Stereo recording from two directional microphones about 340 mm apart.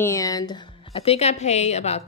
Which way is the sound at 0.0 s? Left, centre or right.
Centre.